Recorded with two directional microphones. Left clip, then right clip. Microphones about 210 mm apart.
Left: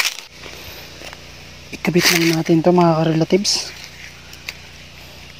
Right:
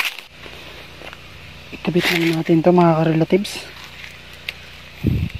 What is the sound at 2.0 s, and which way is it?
Speech, 25° left (ahead or behind).